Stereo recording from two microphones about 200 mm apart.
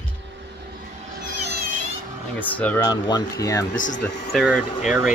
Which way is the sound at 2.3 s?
10° left (ahead or behind).